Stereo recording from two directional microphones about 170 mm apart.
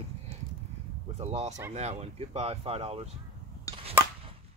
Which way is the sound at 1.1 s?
40° right (ahead or behind).